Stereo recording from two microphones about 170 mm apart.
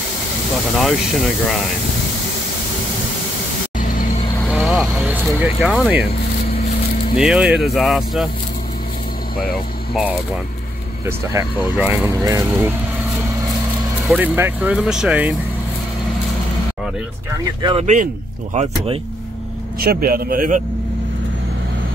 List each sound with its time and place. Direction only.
0.7 s speech: centre (ahead or behind)
4.5 s speech: centre (ahead or behind)
7.2 s speech: 5° right (ahead or behind)
11.7 s speech: 10° right (ahead or behind)
14.0 s speech: 10° right (ahead or behind)
17.6 s speech: 30° right (ahead or behind)
18.5 s speech: 40° right (ahead or behind)
19.8 s a man's voice: 60° right (ahead or behind)